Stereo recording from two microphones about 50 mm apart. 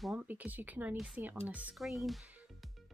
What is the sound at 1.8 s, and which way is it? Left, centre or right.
Speech, centre.